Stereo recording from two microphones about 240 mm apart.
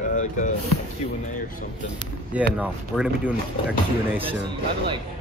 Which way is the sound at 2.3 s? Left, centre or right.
Centre.